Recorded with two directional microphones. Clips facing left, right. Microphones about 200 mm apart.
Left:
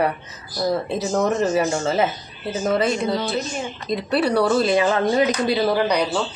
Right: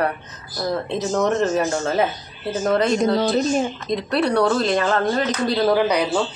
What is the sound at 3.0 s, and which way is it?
Speech, 40° right (ahead or behind).